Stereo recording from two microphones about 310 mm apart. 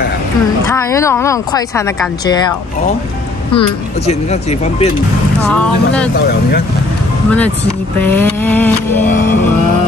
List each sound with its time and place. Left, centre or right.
0.7 s speech: centre
3.5 s speech: centre
5.5 s speech: centre
7.2 s speech: centre